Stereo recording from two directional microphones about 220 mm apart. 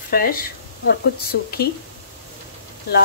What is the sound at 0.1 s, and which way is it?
Speech, 40° left (ahead or behind).